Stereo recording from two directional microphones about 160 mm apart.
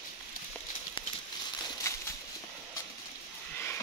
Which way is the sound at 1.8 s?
20° left (ahead or behind).